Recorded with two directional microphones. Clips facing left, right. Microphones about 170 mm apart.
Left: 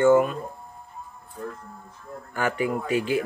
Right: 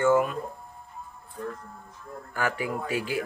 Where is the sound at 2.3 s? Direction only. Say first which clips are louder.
Left 4 dB; 5° right (ahead or behind).